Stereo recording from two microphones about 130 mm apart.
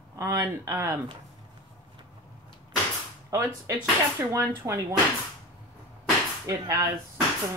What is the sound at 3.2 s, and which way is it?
Speech, 20° right (ahead or behind).